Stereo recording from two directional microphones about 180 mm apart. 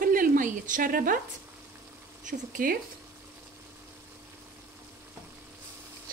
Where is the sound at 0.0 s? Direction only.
50° right (ahead or behind).